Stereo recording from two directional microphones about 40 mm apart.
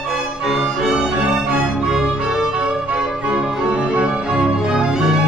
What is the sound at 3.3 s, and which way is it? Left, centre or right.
Music, right.